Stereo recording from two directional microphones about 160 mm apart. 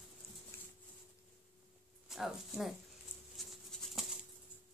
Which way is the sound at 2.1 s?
Centre (ahead or behind).